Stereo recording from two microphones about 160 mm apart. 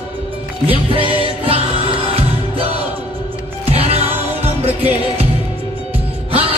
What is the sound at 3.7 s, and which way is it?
Music, 40° right (ahead or behind).